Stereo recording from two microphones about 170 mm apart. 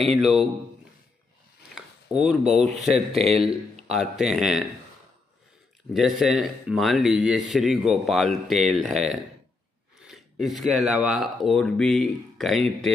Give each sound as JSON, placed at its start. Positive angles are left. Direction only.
{"t": 0.0, "sound": "speech", "side_deg": 0}
{"t": 1.8, "sound": "a sound", "side_deg": 0}
{"t": 2.8, "sound": "speech", "side_deg": 0}
{"t": 3.2, "sound": "speech", "side_deg": -35}
{"t": 3.9, "sound": "speech", "side_deg": -5}
{"t": 5.9, "sound": "speech", "side_deg": 0}